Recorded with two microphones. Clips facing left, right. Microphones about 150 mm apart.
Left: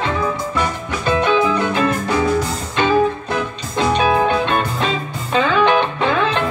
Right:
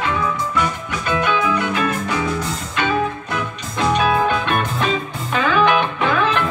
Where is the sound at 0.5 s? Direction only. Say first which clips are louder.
Left 1 dB; 30° left (ahead or behind).